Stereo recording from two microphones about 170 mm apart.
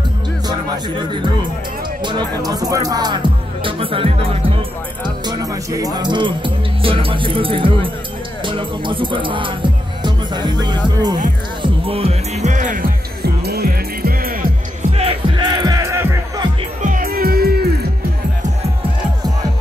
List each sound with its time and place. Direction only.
0.5 s music: 25° right (ahead or behind)
2.0 s speech: 25° right (ahead or behind)
8.5 s music: 30° right (ahead or behind); by 14.9 s 55° right (ahead or behind)
14.9 s music: 35° right (ahead or behind); by 16.4 s 15° right (ahead or behind)
16.8 s music: 55° right (ahead or behind)
18.4 s music: 40° right (ahead or behind)